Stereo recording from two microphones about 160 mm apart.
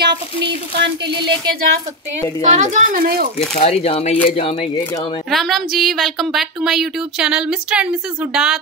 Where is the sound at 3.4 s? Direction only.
40° left (ahead or behind).